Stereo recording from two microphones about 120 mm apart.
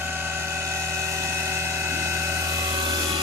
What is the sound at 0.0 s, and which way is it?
Vehicle, 20° right (ahead or behind).